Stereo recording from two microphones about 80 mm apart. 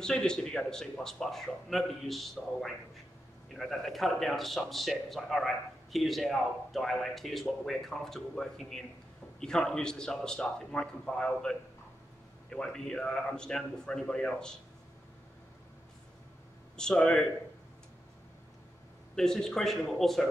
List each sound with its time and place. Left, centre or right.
0.0 s a man's voice: centre
16.7 s a man's voice: centre
19.1 s speech: centre